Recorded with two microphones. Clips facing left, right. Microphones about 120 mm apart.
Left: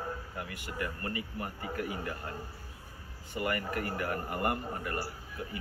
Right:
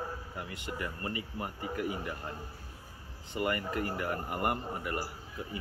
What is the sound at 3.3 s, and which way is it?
Speech, 25° right (ahead or behind).